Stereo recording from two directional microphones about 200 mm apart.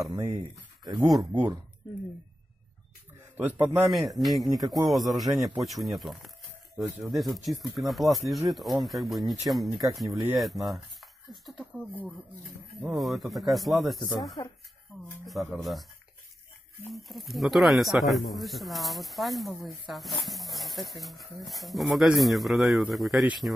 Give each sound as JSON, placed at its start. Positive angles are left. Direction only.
{"t": 0.1, "sound": "speech", "side_deg": -15}
{"t": 3.3, "sound": "speech", "side_deg": -10}
{"t": 4.1, "sound": "speech", "side_deg": 0}
{"t": 16.9, "sound": "speech", "side_deg": 0}